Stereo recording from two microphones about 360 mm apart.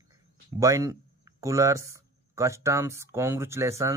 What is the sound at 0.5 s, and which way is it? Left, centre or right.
Speech, centre.